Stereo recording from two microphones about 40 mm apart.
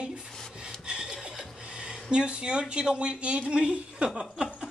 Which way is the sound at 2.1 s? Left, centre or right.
Right.